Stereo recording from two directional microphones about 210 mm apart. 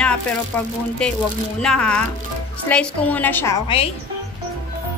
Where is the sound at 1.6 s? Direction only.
5° left (ahead or behind).